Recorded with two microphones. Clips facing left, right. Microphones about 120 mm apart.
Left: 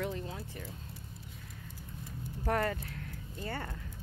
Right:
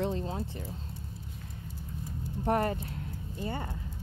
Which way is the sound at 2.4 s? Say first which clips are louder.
Right 4 dB; 25° right (ahead or behind).